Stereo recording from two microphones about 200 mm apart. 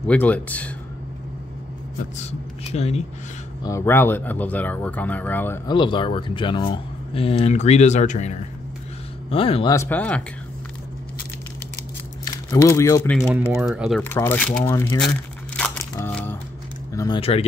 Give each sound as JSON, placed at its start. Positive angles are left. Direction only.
{"t": 0.0, "sound": "speech", "side_deg": 5}
{"t": 2.1, "sound": "speech", "side_deg": 30}
{"t": 3.6, "sound": "speech", "side_deg": 15}
{"t": 5.7, "sound": "speech", "side_deg": 25}
{"t": 9.8, "sound": "speech", "side_deg": 10}
{"t": 12.3, "sound": "speech", "side_deg": 15}
{"t": 13.6, "sound": "speech", "side_deg": 0}
{"t": 14.0, "sound": "speech", "side_deg": 10}
{"t": 15.0, "sound": "crumpling", "side_deg": 5}
{"t": 16.9, "sound": "speech", "side_deg": 15}
{"t": 17.2, "sound": "speech", "side_deg": 30}